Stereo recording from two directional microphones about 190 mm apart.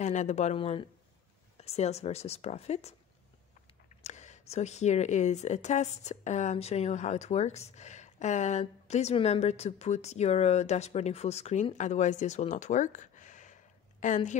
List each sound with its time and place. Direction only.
0.0 s speech: 40° left (ahead or behind)
4.0 s speech: 35° left (ahead or behind)